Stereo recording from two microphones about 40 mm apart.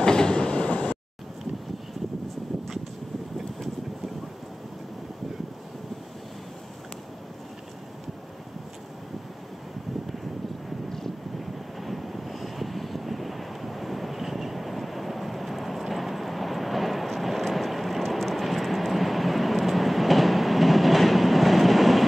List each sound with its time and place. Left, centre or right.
0.0 s train: centre; by 0.9 s left
11.8 s vehicle: centre